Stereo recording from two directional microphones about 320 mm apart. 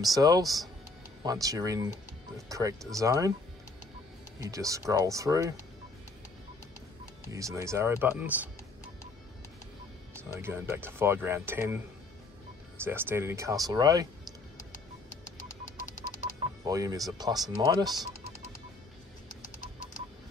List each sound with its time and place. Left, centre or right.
0.0 s speech: centre
4.4 s speech: centre
7.2 s speech: centre
10.1 s speech: centre
12.8 s speech: centre
16.6 s speech: centre